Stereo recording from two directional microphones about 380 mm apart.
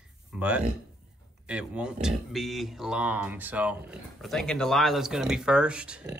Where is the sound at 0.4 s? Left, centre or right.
Centre.